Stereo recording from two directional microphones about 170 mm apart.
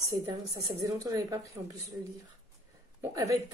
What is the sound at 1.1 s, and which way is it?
Speech, 20° right (ahead or behind).